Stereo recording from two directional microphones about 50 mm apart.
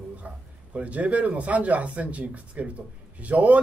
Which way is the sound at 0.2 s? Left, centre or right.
Right.